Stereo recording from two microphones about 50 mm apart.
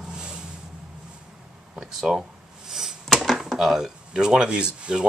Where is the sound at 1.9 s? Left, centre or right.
Centre.